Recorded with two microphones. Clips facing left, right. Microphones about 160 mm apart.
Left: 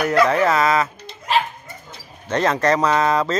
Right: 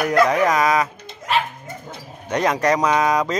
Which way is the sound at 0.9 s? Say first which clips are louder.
Left 1 dB; 50° right (ahead or behind).